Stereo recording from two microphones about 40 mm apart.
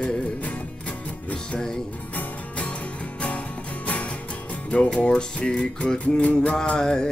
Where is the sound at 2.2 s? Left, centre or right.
Left.